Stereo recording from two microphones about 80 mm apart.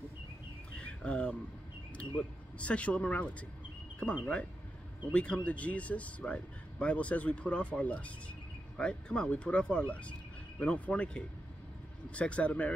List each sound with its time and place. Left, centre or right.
0.7 s bird: centre
2.0 s speech: centre
4.0 s speech: centre